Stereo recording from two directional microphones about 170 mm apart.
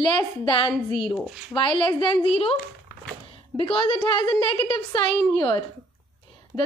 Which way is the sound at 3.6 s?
30° left (ahead or behind).